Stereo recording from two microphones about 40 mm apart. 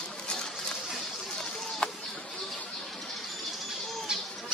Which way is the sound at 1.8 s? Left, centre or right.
Left.